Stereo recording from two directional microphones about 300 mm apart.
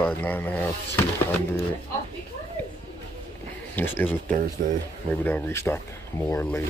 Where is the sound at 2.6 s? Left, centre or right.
Centre.